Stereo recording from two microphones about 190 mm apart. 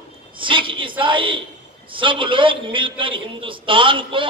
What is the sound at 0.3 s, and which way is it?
A woman's voice, 25° right (ahead or behind).